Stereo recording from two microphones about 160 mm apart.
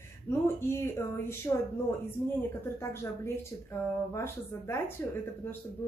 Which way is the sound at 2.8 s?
15° left (ahead or behind).